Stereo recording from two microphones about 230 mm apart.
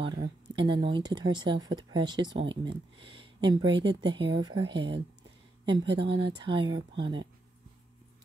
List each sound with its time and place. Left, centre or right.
0.0 s speech: centre